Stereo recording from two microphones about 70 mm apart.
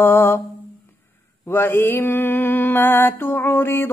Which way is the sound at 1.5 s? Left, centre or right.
Left.